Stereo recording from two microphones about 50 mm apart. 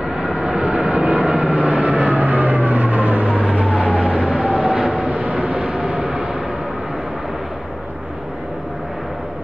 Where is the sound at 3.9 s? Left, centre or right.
Right; by 7.5 s centre.